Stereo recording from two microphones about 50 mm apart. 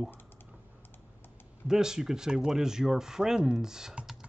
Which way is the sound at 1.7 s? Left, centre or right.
Centre.